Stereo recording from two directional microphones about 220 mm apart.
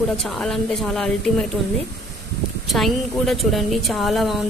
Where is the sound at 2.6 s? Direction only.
Centre (ahead or behind).